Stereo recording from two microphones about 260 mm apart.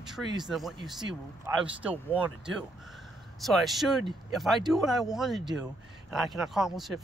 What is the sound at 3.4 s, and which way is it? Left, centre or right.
Speech, centre.